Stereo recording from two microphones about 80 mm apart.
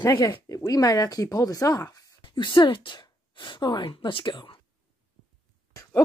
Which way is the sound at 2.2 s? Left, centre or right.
Left.